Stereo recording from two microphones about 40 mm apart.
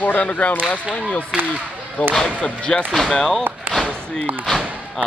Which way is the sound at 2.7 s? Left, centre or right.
Centre.